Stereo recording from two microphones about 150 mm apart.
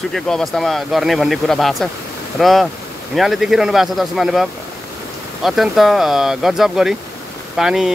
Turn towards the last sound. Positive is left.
turn(degrees=-5)  # may be behind; listen again after turning